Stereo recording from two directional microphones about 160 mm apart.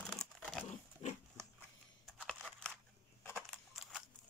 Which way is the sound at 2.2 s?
Centre (ahead or behind).